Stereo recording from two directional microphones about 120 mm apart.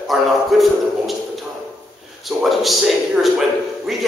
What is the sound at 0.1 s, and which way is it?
A man's voice, centre (ahead or behind).